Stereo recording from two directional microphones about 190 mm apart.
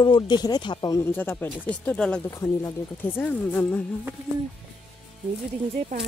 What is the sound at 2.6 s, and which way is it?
Speech, 15° left (ahead or behind).